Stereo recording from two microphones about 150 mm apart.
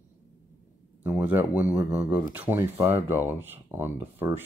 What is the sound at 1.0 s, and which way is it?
Speech, 10° right (ahead or behind).